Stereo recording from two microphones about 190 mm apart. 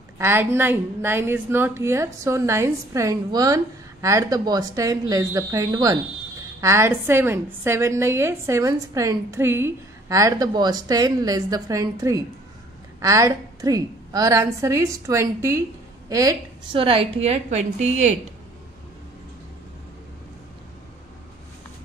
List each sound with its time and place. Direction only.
0.2 s a woman's voice: 10° right (ahead or behind)
16.8 s a woman's voice: 30° right (ahead or behind)